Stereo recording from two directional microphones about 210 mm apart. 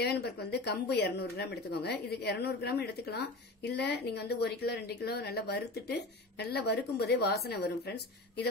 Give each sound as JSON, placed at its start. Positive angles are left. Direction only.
{"t": 0.0, "sound": "speech", "side_deg": 50}